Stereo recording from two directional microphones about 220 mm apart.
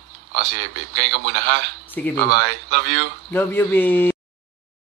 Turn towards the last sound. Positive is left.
turn(degrees=10)  # may be behind; listen again after turning